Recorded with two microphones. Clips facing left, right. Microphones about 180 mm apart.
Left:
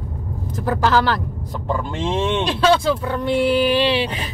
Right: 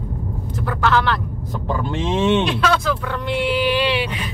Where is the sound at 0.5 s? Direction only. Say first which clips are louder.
Left 2 dB; 35° left (ahead or behind).